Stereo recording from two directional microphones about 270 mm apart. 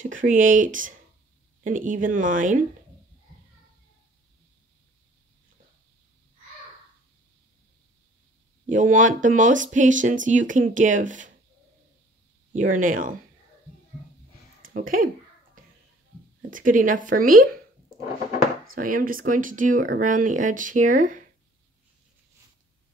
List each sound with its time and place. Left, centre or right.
0.0 s speech: right
8.6 s speech: right
12.5 s speech: right
14.6 s speech: right
16.4 s speech: right